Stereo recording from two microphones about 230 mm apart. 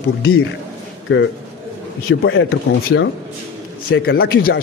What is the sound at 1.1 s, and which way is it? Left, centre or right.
A man's voice, left.